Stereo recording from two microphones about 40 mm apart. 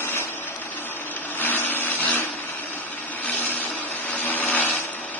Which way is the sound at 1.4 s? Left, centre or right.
Left.